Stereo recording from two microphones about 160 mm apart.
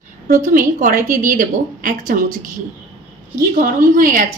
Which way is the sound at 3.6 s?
55° right (ahead or behind).